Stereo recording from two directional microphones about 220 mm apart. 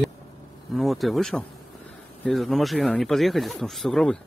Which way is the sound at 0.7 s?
Centre (ahead or behind).